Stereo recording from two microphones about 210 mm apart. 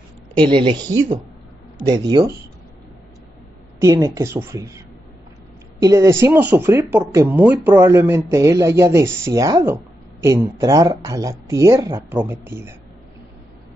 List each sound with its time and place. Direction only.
0.4 s speech: 20° right (ahead or behind)
3.8 s speech: 15° right (ahead or behind)